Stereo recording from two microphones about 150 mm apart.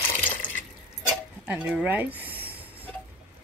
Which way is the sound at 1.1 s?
5° right (ahead or behind).